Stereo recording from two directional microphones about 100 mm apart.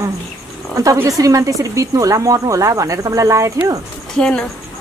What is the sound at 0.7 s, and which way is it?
Speech, 35° right (ahead or behind).